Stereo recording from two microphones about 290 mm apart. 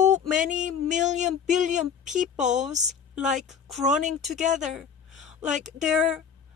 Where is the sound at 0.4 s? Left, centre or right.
Right.